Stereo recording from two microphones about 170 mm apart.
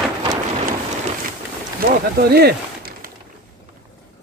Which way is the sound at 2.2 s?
70° right (ahead or behind).